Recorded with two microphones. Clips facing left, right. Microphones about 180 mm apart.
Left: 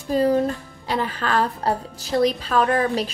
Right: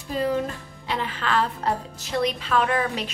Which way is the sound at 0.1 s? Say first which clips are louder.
Left 6 dB; 40° left (ahead or behind).